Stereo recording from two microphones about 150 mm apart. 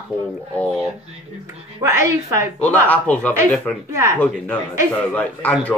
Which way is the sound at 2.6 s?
10° left (ahead or behind).